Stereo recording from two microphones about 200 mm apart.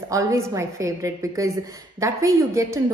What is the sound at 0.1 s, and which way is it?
A woman's voice, 15° right (ahead or behind).